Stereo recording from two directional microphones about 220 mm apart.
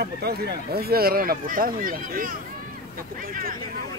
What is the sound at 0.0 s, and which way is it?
Speech, 45° right (ahead or behind).